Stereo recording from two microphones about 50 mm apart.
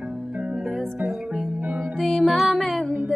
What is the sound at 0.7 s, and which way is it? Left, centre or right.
Music, centre.